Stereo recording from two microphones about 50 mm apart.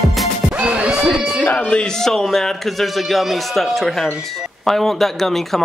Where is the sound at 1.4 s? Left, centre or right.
Left.